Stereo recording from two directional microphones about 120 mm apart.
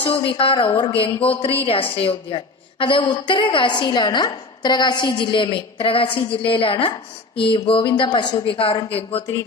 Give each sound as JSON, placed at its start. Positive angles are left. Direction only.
{"t": 0.2, "sound": "a woman's voice", "side_deg": 50}